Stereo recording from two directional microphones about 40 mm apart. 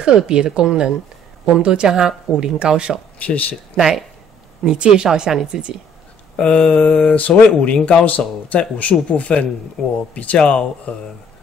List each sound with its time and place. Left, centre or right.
0.0 s a woman's voice: right
3.3 s speech: left
3.7 s speech: centre
4.6 s a woman's voice: right
6.3 s mantra: left
7.2 s speech: left
9.8 s speech: centre
10.1 s speech: left